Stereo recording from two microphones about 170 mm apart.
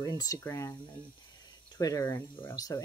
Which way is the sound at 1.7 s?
20° left (ahead or behind).